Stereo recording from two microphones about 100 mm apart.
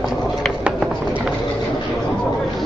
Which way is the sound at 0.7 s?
10° right (ahead or behind).